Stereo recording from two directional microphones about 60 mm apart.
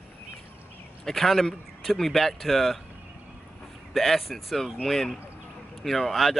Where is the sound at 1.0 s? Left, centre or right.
Centre.